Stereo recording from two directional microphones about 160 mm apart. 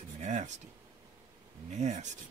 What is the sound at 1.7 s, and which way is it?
Speech, 45° right (ahead or behind).